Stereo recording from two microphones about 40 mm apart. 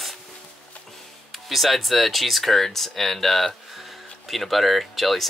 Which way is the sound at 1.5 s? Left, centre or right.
Centre.